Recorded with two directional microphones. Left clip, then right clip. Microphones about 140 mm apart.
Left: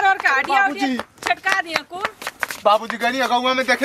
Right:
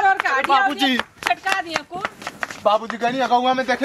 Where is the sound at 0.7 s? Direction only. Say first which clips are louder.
Right 3 dB; 30° right (ahead or behind).